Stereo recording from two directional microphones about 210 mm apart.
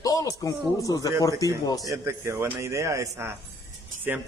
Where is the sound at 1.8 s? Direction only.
15° right (ahead or behind).